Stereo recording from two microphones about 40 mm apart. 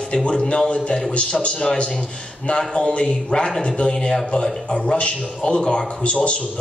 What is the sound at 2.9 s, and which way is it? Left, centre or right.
A man's voice, left.